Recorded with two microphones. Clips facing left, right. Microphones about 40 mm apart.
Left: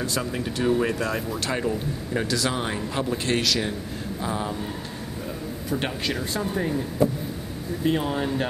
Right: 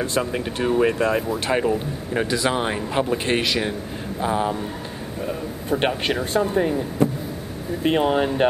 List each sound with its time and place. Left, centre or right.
0.0 s a man's voice: right
6.4 s a man's voice: centre
7.8 s speech: right